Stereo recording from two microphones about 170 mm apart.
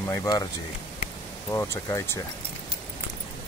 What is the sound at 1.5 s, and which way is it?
Speech, 15° left (ahead or behind).